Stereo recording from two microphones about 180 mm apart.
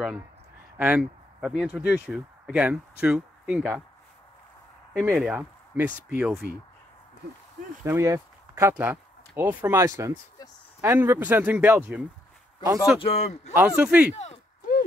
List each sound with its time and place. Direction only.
0.7 s speech: 10° right (ahead or behind)
5.0 s speech: 10° right (ahead or behind)
7.8 s speech: 15° right (ahead or behind)
13.0 s speech: 35° left (ahead or behind)
13.5 s speech: 10° right (ahead or behind)
14.1 s speech: 35° left (ahead or behind)